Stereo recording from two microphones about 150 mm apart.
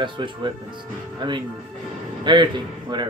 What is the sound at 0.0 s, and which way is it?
Speech, 35° right (ahead or behind).